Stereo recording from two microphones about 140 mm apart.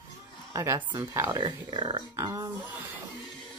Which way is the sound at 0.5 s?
20° right (ahead or behind).